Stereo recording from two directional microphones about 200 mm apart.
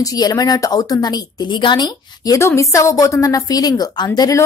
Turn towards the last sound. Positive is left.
turn(degrees=15)  # may be behind; listen again after turning